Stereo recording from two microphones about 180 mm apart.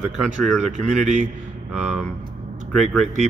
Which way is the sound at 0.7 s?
45° right (ahead or behind).